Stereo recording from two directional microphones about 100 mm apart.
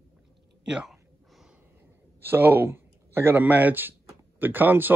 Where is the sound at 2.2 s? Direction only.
20° right (ahead or behind).